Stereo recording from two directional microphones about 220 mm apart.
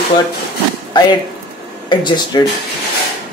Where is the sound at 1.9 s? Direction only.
20° left (ahead or behind).